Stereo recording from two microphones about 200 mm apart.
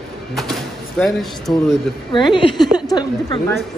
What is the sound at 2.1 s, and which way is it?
Speech, 25° left (ahead or behind).